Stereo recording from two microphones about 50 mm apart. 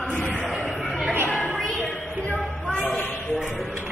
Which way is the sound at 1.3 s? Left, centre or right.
Centre.